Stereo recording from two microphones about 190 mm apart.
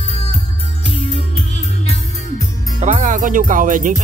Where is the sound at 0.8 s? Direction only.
30° left (ahead or behind).